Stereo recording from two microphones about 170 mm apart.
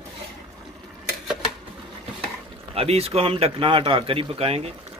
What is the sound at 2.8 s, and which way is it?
Speech, 35° right (ahead or behind).